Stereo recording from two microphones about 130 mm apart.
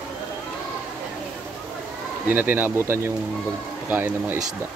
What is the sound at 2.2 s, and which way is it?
Speech, 15° right (ahead or behind).